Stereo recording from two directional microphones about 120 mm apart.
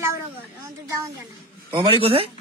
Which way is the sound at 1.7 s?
45° right (ahead or behind).